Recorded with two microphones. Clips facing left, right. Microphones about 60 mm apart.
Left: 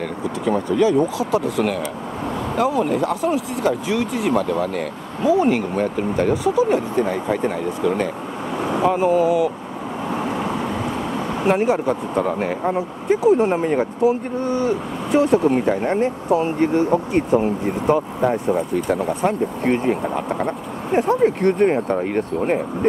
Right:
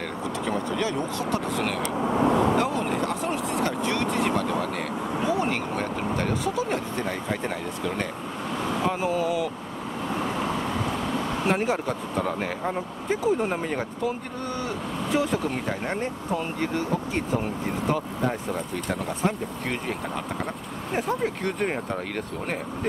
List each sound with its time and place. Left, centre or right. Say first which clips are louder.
0.5 s speech: left 11 dB; centre
11.4 s speech: left 9 dB; centre
15.3 s speech: left 11 dB; centre
20.4 s speech: left 8 dB; centre
21.9 s speech: left 10 dB; centre